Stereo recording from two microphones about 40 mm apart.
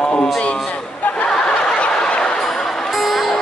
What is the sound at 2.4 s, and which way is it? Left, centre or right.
Music, centre.